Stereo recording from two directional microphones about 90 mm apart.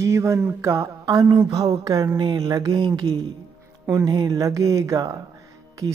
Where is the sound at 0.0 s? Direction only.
35° right (ahead or behind).